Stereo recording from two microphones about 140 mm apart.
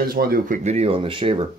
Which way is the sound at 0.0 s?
90° right.